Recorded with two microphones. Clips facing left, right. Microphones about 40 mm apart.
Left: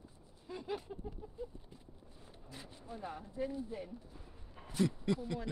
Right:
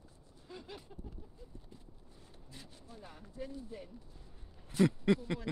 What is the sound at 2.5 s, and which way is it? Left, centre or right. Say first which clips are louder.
Speech: left 5 dB; centre.